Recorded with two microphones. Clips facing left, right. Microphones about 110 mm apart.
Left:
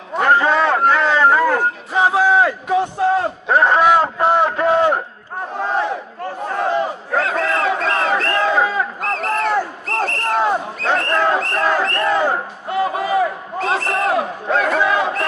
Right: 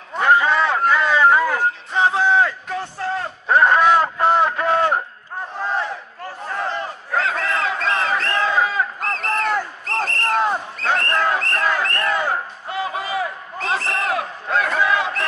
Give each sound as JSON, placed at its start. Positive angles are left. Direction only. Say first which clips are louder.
{"t": 0.2, "sound": "a sound", "louder": "left 2 dB", "side_deg": 0}
{"t": 6.4, "sound": "battle cry", "louder": "left 6 dB", "side_deg": 15}
{"t": 7.8, "sound": "crowd", "louder": "left 3 dB", "side_deg": 5}
{"t": 9.0, "sound": "a sound", "louder": "left 3 dB", "side_deg": 5}
{"t": 11.8, "sound": "crowd", "louder": "left 4 dB", "side_deg": 10}
{"t": 12.8, "sound": "a sound", "louder": "left 7 dB", "side_deg": 30}
{"t": 13.6, "sound": "crowd", "louder": "left 4 dB", "side_deg": 10}
{"t": 14.0, "sound": "battle cry", "louder": "left 5 dB", "side_deg": 20}
{"t": 14.8, "sound": "crowd", "louder": "left 2 dB", "side_deg": 25}